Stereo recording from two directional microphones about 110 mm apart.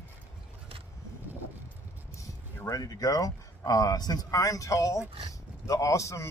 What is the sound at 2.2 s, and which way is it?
Speech, 30° left (ahead or behind).